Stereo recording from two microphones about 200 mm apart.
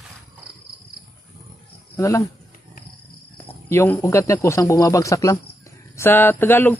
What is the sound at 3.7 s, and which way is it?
Speech, 10° left (ahead or behind).